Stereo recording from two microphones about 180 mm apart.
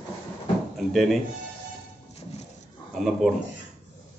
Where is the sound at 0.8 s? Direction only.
Centre (ahead or behind).